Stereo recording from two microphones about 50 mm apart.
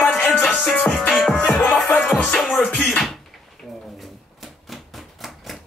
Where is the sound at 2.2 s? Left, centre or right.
Centre.